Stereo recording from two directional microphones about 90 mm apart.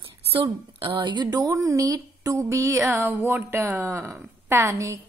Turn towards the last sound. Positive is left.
turn(degrees=-35)  # may be behind; listen again after turning